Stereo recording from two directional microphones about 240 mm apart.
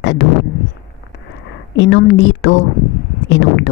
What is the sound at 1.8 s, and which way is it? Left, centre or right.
A woman's voice, left.